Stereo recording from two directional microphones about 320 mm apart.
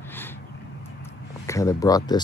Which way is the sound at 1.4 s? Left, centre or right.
Centre.